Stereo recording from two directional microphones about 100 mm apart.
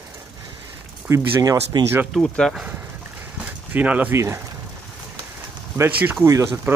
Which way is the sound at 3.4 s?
15° right (ahead or behind).